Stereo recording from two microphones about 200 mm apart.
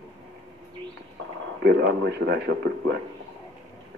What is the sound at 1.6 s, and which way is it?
A man's voice, 55° right (ahead or behind).